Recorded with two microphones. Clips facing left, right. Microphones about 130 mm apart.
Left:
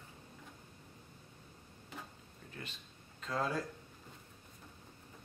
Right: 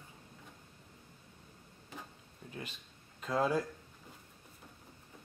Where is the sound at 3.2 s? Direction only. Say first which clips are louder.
Right 5 dB; 15° right (ahead or behind).